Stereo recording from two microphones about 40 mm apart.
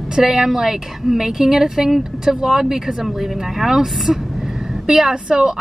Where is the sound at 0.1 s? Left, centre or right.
Centre.